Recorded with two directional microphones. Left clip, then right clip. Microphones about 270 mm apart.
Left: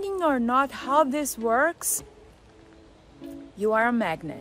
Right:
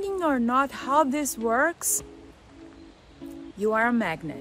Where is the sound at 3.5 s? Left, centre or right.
Centre.